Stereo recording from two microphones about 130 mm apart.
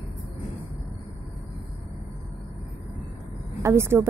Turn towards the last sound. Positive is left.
turn(degrees=-20)  # may be behind; listen again after turning